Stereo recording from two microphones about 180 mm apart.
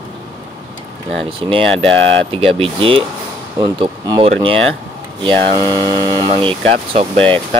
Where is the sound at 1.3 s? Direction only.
30° right (ahead or behind).